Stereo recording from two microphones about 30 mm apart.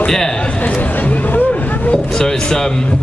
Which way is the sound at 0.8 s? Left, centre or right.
Left.